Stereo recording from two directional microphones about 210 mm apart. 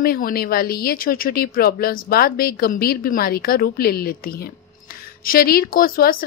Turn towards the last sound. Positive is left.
turn(degrees=45)  # may be behind; listen again after turning